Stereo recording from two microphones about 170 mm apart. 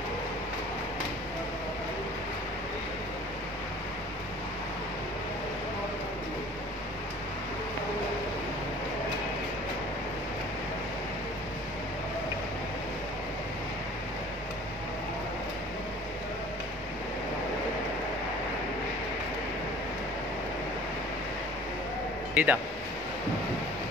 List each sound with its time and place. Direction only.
22.3 s speech: 10° right (ahead or behind)